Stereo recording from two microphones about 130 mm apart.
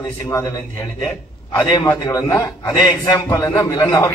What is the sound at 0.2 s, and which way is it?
A man's voice, 25° left (ahead or behind).